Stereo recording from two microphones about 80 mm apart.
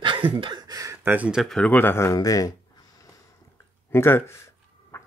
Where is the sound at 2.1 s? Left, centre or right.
Left.